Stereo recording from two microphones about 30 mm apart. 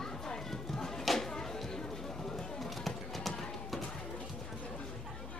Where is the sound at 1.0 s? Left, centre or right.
Centre.